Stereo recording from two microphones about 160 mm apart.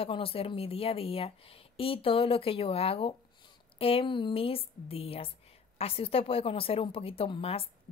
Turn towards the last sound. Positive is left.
turn(degrees=35)  # may be behind; listen again after turning